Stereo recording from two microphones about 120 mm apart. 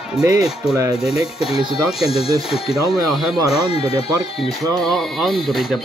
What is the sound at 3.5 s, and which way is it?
Speech, 55° left (ahead or behind).